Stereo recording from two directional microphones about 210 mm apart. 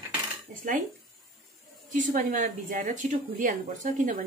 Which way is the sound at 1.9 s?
40° right (ahead or behind).